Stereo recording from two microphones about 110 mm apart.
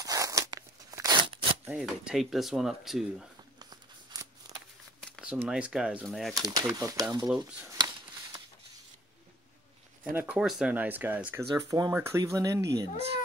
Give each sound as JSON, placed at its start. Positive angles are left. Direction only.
{"t": 0.0, "sound": "a sound", "side_deg": -30}
{"t": 0.6, "sound": "crunch", "side_deg": -35}
{"t": 1.2, "sound": "shuffling cards", "side_deg": -55}
{"t": 1.7, "sound": "speech", "side_deg": -5}
{"t": 3.7, "sound": "scissors", "side_deg": -35}
{"t": 5.2, "sound": "speech", "side_deg": -10}
{"t": 6.3, "sound": "speech", "side_deg": -35}
{"t": 7.7, "sound": "a sound", "side_deg": -40}
{"t": 10.1, "sound": "speech", "side_deg": -15}
{"t": 11.3, "sound": "speech", "side_deg": -35}